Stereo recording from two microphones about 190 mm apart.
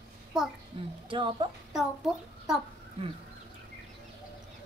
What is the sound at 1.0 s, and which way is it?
Speech, 25° right (ahead or behind).